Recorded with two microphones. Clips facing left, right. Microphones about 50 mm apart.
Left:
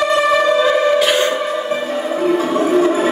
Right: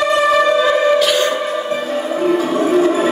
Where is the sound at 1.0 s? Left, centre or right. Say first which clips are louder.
Even; left.